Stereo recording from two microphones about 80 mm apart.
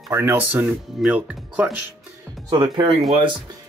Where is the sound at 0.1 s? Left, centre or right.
Right.